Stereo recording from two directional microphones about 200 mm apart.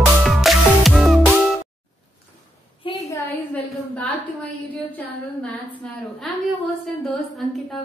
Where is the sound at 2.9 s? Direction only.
25° left (ahead or behind).